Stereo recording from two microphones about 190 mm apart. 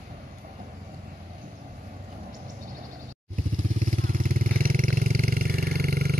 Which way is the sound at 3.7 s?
45° right (ahead or behind).